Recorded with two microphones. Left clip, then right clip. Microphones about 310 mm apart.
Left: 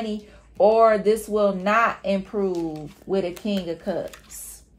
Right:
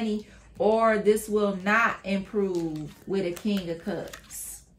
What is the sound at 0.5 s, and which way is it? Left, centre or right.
Speech, centre.